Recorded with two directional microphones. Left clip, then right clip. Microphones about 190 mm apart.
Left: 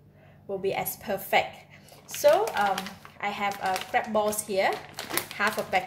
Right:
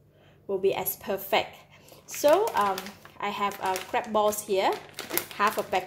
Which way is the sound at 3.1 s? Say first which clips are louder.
Even; 35° right (ahead or behind).